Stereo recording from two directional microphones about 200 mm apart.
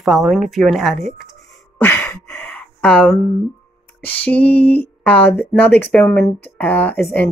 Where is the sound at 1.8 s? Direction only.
10° left (ahead or behind).